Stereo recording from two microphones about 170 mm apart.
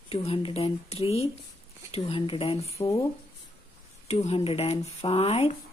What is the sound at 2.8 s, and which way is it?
Speech, 20° left (ahead or behind).